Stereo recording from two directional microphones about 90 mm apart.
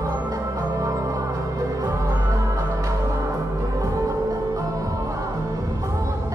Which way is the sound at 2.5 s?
35° right (ahead or behind).